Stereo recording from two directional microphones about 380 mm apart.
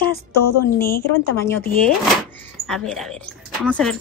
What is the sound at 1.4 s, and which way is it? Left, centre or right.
Speech, centre.